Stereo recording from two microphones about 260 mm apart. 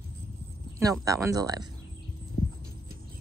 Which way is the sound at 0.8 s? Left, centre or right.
Centre.